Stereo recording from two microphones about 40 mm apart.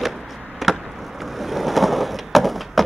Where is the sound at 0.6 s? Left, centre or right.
Centre.